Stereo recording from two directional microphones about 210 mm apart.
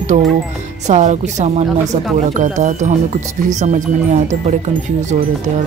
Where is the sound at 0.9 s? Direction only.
35° right (ahead or behind).